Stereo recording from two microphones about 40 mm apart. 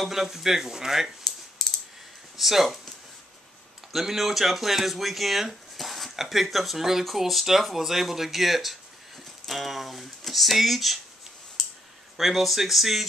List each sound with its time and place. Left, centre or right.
0.0 s speech: centre
1.6 s clicking: centre
2.3 s speech: centre
3.9 s speech: centre
12.2 s speech: centre